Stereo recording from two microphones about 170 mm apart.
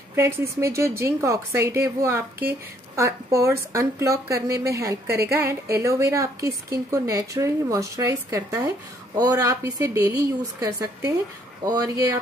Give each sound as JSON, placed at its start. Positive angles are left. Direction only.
{"t": 0.1, "sound": "a woman's voice", "side_deg": -15}